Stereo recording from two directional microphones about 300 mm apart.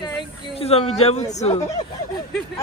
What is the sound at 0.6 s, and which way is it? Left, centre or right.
A man's voice, centre.